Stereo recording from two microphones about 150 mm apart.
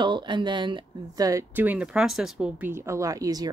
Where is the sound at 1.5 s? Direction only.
10° right (ahead or behind).